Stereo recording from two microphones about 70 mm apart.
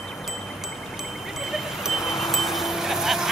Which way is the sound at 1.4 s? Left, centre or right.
Centre.